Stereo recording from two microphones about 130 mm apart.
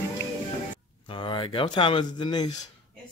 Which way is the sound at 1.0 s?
40° left (ahead or behind).